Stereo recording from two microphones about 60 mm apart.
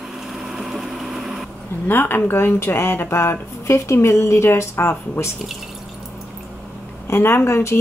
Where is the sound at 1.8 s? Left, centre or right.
Left.